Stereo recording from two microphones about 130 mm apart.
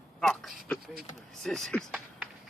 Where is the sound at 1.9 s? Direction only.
5° right (ahead or behind).